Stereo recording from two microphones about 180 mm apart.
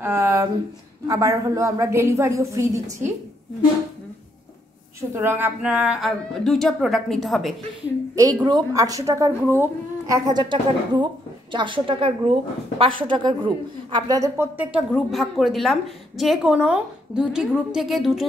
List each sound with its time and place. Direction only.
0.0 s a sound: 15° right (ahead or behind)
1.0 s a woman's voice: 20° right (ahead or behind)
5.1 s a woman's voice: 10° right (ahead or behind)
8.2 s a woman's voice: 20° right (ahead or behind); by 18.2 s centre (ahead or behind)